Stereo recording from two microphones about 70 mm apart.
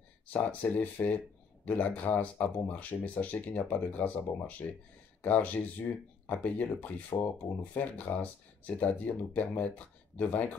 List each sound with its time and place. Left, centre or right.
0.3 s speech: left